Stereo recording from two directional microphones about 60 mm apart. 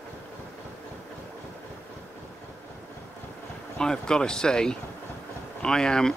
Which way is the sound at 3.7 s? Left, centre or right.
Centre.